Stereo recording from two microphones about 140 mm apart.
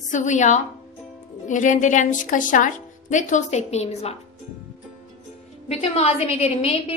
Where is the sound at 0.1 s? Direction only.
60° left (ahead or behind).